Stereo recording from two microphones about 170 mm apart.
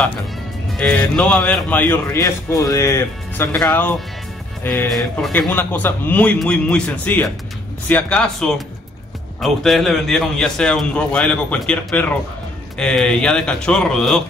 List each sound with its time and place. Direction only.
0.7 s a man's voice: 5° left (ahead or behind)
4.9 s a man's voice: centre (ahead or behind)